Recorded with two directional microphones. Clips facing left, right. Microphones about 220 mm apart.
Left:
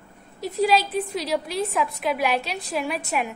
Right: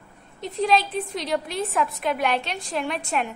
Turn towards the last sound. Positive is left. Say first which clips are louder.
# even
turn(degrees=5)  # may be behind; listen again after turning